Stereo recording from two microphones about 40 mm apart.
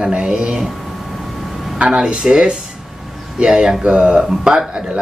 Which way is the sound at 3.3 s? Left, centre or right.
Right.